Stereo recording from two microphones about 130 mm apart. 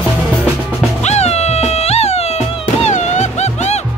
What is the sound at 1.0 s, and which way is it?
Music, 55° left (ahead or behind).